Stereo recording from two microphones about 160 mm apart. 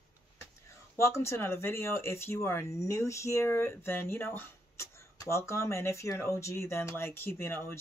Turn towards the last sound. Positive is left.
turn(degrees=15)  # may be behind; listen again after turning